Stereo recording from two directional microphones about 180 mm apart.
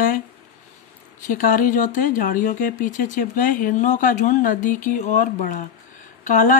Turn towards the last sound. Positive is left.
turn(degrees=45)  # may be behind; listen again after turning